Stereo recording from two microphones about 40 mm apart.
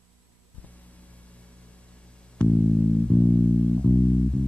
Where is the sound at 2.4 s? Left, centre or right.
Left.